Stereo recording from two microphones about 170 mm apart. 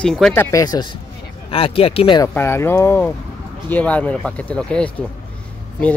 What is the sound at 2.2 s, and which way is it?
Speech, 15° left (ahead or behind).